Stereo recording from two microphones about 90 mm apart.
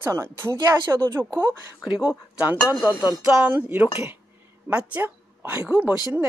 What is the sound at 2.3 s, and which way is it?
Speech, 15° right (ahead or behind).